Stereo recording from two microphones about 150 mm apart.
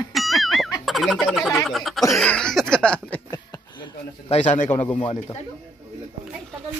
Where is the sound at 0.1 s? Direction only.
Centre (ahead or behind).